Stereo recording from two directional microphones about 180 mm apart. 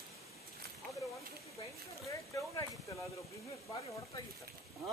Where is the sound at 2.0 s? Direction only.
15° left (ahead or behind).